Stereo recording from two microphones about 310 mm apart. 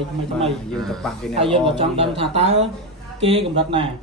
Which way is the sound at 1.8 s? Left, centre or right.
Centre.